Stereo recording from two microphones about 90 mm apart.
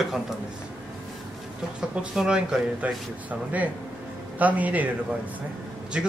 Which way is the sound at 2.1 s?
10° right (ahead or behind).